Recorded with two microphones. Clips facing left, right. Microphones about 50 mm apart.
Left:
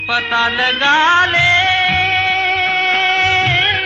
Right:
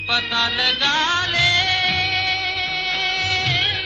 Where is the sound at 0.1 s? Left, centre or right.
Left.